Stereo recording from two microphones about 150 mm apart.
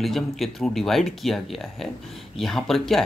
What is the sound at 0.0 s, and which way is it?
Speech, centre (ahead or behind).